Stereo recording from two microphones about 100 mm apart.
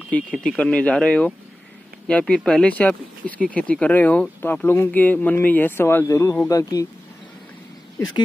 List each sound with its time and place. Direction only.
0.1 s speech: 10° left (ahead or behind); by 6.9 s 35° left (ahead or behind)